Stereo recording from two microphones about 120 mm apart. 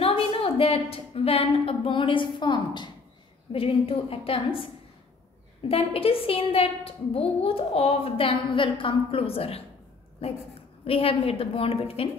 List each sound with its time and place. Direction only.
0.0 s a woman's voice: 50° left (ahead or behind)
3.5 s a woman's voice: 50° left (ahead or behind)
5.7 s a woman's voice: 50° left (ahead or behind)